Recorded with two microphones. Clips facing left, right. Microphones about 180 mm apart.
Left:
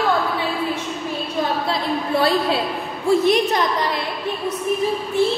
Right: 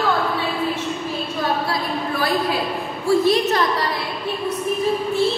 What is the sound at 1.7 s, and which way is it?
A woman's voice, 25° left (ahead or behind).